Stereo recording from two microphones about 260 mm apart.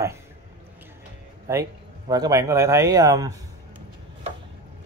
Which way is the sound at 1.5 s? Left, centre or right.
Centre.